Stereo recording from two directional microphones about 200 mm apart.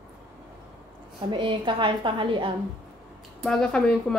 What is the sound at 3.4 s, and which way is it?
Speech, centre (ahead or behind).